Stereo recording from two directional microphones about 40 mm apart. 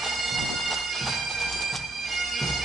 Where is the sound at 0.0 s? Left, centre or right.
Centre.